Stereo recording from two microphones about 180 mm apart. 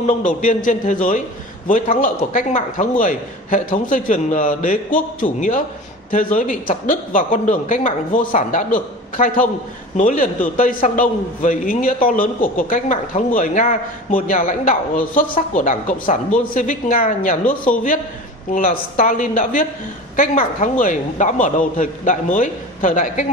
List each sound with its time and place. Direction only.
0.0 s a man's voice: 45° left (ahead or behind)